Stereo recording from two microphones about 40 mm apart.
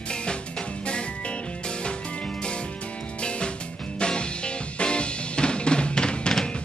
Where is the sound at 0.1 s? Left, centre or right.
Left.